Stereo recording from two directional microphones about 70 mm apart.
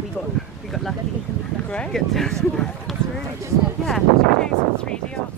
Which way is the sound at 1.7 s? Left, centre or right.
Centre.